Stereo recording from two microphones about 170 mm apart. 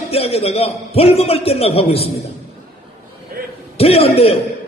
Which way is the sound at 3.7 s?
35° left (ahead or behind).